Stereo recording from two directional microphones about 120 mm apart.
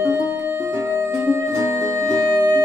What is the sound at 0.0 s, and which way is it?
Music, 20° right (ahead or behind).